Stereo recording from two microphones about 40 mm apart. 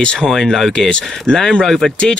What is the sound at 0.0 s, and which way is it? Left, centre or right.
Speech, left.